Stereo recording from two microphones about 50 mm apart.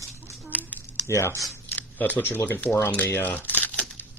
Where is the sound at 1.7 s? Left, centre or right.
Left.